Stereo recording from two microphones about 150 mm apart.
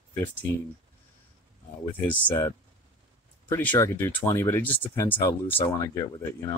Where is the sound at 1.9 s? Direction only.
10° left (ahead or behind).